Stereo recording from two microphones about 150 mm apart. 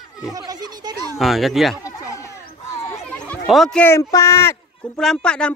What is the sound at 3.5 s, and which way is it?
Speech, 5° left (ahead or behind).